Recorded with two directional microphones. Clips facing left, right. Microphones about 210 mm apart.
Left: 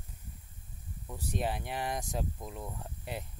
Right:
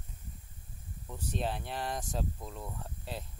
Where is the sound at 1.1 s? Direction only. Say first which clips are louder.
Left 1 dB; 10° left (ahead or behind).